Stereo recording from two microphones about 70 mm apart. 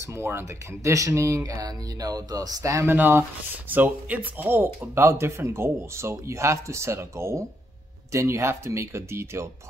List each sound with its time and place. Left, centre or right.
0.0 s speech: right
0.9 s speech: right
1.5 s speech: right
2.9 s speech: right
4.6 s speech: right